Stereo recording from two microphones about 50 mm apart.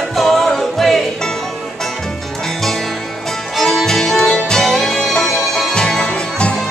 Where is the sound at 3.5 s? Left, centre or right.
Centre.